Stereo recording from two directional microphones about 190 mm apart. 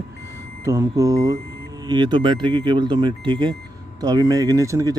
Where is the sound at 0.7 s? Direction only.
15° right (ahead or behind).